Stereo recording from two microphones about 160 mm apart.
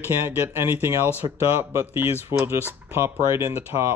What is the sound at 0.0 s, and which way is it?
Speech, 15° right (ahead or behind).